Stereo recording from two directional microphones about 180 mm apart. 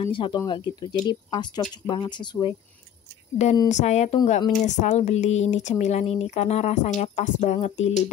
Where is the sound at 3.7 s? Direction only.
40° left (ahead or behind).